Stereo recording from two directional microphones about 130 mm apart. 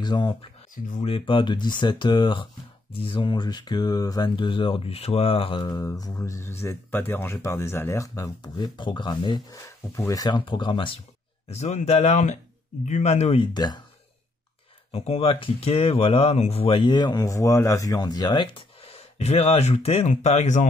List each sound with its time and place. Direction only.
0.0 s speech: 35° left (ahead or behind)
11.4 s speech: 55° left (ahead or behind)
13.5 s speech: 35° left (ahead or behind)
14.9 s speech: 55° left (ahead or behind)